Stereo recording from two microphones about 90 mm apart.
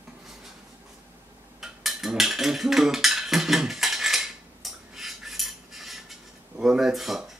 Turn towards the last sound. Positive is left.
turn(degrees=0)  # may be behind; listen again after turning